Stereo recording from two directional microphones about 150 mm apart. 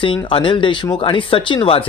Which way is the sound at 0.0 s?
35° left (ahead or behind).